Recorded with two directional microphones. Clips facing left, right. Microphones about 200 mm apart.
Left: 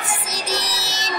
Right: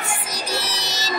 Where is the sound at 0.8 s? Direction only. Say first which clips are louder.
Right 1 dB; centre (ahead or behind).